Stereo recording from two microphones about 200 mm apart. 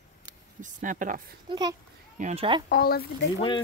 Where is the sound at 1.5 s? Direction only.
20° right (ahead or behind).